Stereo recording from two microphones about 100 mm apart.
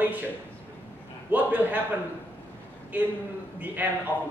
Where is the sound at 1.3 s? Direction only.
20° right (ahead or behind).